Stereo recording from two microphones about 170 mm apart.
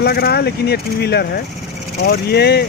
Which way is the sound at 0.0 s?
65° left (ahead or behind).